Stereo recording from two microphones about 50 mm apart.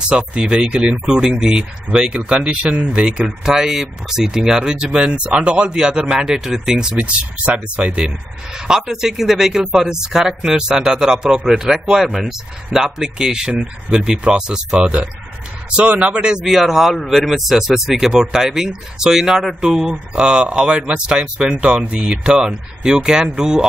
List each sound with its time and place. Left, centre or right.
0.1 s speech: centre
7.0 s speech: right; by 16.9 s centre
16.9 s speech: centre